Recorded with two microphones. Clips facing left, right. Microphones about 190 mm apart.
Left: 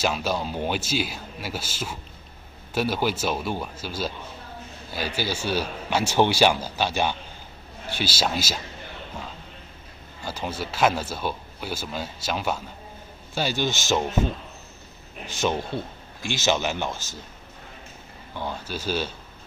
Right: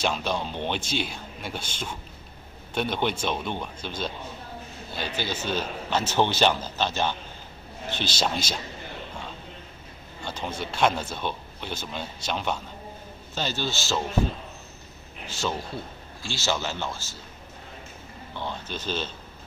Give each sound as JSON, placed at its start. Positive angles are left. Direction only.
{"t": 0.0, "sound": "a man's voice", "side_deg": 5}
{"t": 10.2, "sound": "speech", "side_deg": 5}
{"t": 15.2, "sound": "a man's voice", "side_deg": 20}
{"t": 18.4, "sound": "speech", "side_deg": 10}